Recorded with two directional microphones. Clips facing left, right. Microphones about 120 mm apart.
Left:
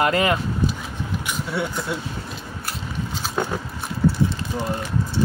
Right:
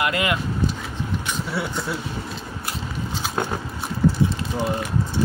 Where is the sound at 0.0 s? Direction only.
35° left (ahead or behind).